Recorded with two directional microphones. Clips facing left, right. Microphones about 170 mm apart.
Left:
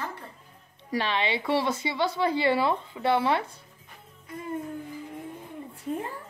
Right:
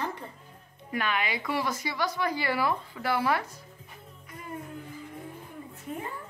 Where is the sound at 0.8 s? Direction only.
30° left (ahead or behind).